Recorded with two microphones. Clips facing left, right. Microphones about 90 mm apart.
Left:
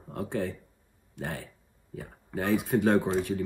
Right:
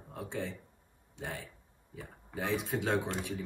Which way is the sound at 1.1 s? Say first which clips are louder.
Left 5 dB; 60° left (ahead or behind).